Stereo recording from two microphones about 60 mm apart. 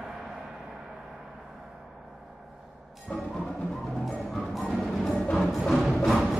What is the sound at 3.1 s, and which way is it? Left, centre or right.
Music, left.